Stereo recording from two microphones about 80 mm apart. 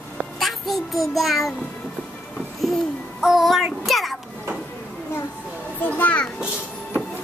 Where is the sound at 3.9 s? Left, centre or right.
Centre.